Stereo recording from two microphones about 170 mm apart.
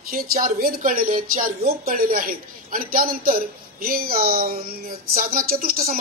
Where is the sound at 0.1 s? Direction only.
55° right (ahead or behind).